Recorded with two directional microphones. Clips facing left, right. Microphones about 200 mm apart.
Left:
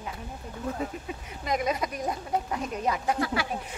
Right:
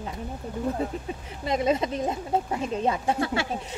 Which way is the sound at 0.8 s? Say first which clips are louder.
Right 3 dB; 30° right (ahead or behind).